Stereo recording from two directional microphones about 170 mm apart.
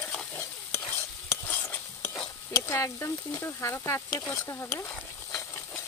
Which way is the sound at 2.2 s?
20° left (ahead or behind).